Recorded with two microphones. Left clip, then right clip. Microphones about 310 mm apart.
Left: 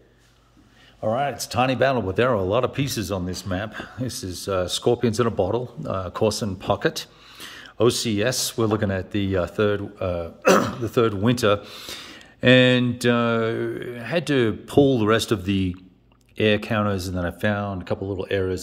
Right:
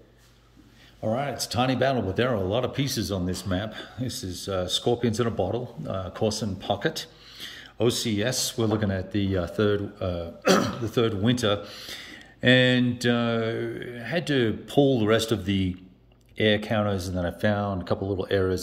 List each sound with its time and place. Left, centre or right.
1.0 s mantra: centre
7.3 s a sound: centre
7.8 s mantra: centre